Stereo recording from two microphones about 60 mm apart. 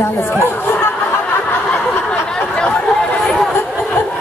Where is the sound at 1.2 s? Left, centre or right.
Left.